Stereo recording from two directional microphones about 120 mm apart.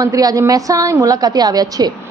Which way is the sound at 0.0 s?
30° right (ahead or behind).